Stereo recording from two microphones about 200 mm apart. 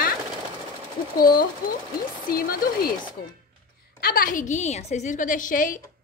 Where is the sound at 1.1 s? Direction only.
45° left (ahead or behind).